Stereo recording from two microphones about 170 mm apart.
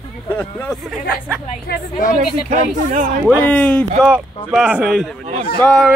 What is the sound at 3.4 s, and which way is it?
Speech, 10° left (ahead or behind).